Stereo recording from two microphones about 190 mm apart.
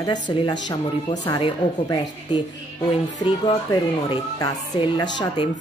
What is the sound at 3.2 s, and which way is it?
Speech, 20° left (ahead or behind).